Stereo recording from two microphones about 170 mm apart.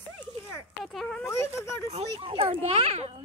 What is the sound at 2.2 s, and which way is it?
Children playing, 35° right (ahead or behind).